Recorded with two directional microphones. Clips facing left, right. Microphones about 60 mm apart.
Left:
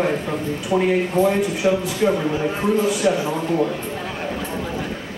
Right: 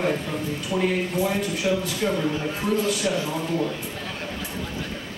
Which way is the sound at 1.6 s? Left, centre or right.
Left.